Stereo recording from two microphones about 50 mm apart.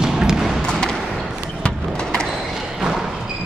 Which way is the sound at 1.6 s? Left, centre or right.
Centre.